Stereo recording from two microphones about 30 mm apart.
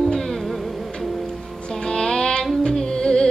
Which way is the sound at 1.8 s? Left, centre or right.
Left.